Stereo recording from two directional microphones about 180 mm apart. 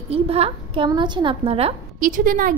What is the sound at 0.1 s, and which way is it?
A woman's voice, 35° right (ahead or behind).